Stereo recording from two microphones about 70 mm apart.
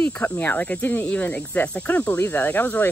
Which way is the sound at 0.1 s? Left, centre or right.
Left.